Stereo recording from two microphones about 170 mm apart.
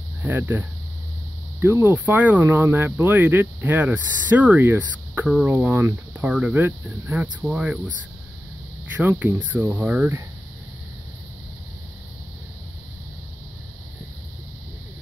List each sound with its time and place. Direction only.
0.2 s speech: 10° right (ahead or behind)
8.9 s speech: 10° right (ahead or behind)